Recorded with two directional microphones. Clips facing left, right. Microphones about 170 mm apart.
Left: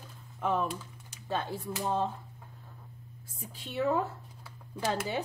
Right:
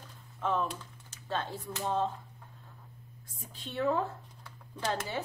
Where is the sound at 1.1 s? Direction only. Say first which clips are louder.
Left 2 dB; 10° left (ahead or behind).